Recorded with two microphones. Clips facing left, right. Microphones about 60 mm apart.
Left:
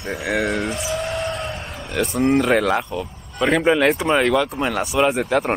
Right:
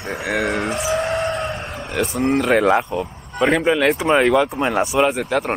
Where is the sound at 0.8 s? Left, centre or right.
Right.